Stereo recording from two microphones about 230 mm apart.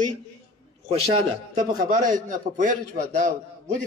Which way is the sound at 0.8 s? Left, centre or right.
Right.